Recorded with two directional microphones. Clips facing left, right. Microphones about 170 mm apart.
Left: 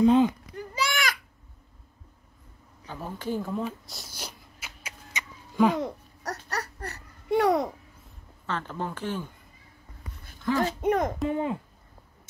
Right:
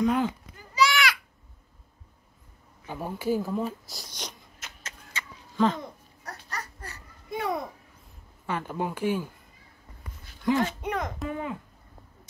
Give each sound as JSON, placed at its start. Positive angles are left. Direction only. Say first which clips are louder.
{"t": 0.0, "sound": "speech", "louder": "left 5 dB", "side_deg": 25}
{"t": 0.6, "sound": "a sound", "louder": "right 6 dB", "side_deg": 50}
{"t": 2.9, "sound": "a sound", "louder": "right 4 dB", "side_deg": -10}
{"t": 5.8, "sound": "babbling", "louder": "left 9 dB", "side_deg": 75}
{"t": 8.5, "sound": "speech", "louder": "right 2 dB", "side_deg": -10}
{"t": 10.6, "sound": "speech", "louder": "left 4 dB", "side_deg": 45}
{"t": 11.2, "sound": "speech", "louder": "left 5 dB", "side_deg": 30}